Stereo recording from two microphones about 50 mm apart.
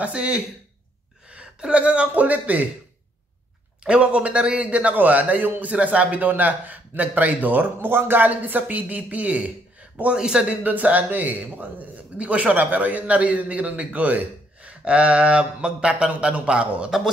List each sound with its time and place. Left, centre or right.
0.0 s a man's voice: right
3.8 s a man's voice: right
10.1 s speech: centre
10.6 s a man's voice: right